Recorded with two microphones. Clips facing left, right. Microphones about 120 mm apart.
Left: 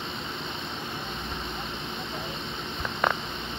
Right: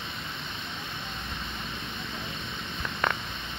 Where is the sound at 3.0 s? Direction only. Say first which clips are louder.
Left 3 dB; 15° left (ahead or behind).